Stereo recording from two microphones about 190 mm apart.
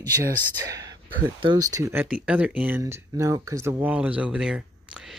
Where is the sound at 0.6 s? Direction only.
20° right (ahead or behind).